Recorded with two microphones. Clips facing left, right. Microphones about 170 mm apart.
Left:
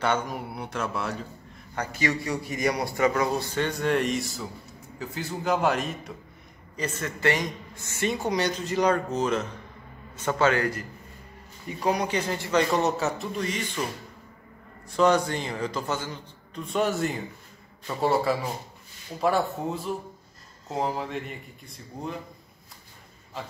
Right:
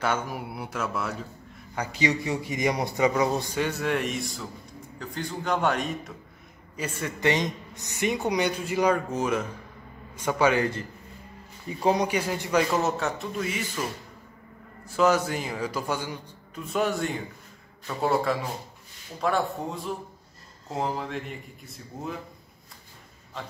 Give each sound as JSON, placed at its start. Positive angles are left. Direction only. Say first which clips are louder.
{"t": 0.0, "sound": "a man's voice", "louder": "left 2 dB", "side_deg": -5}
{"t": 1.8, "sound": "a man's voice", "louder": "right 1 dB", "side_deg": -15}
{"t": 3.8, "sound": "a man's voice", "louder": "left 3 dB", "side_deg": 0}
{"t": 6.8, "sound": "a man's voice", "louder": "even", "side_deg": -10}
{"t": 12.1, "sound": "a man's voice", "louder": "even", "side_deg": -10}
{"t": 14.9, "sound": "a man's voice", "louder": "left 1 dB", "side_deg": -5}
{"t": 23.4, "sound": "a man's voice", "louder": "left 1 dB", "side_deg": 0}